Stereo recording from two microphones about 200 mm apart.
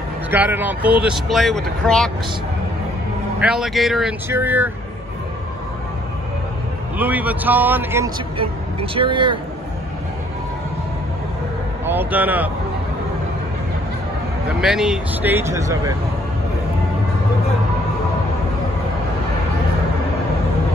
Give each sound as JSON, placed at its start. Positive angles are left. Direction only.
{"t": 0.3, "sound": "speech", "side_deg": -10}
{"t": 3.3, "sound": "speech", "side_deg": -5}
{"t": 7.0, "sound": "speech", "side_deg": -10}
{"t": 8.9, "sound": "speech", "side_deg": -25}
{"t": 11.8, "sound": "speech", "side_deg": -10}
{"t": 14.6, "sound": "speech", "side_deg": 0}